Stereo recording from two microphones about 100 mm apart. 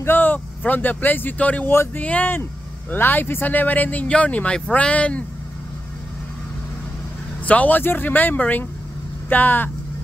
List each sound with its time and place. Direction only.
0.0 s speech: 20° left (ahead or behind)
7.4 s speech: 15° left (ahead or behind)